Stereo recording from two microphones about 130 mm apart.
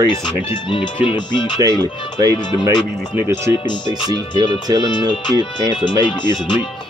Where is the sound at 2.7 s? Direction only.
35° left (ahead or behind).